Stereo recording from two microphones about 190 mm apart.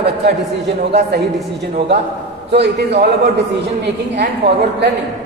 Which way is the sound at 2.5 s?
60° right (ahead or behind).